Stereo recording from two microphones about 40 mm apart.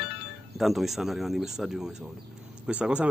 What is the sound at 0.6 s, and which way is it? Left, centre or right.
Speech, centre.